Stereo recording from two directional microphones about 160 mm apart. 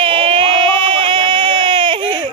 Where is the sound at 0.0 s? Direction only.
35° right (ahead or behind).